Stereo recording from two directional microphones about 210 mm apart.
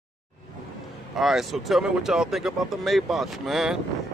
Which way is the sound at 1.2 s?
Centre (ahead or behind).